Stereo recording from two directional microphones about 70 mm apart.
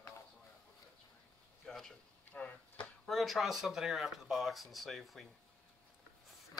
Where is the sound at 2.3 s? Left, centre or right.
Left.